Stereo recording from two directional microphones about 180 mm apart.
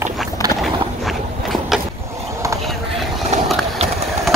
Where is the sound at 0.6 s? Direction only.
Centre (ahead or behind).